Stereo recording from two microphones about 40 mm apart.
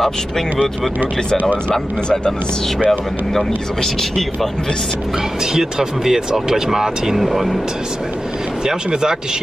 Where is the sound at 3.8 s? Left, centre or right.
Centre.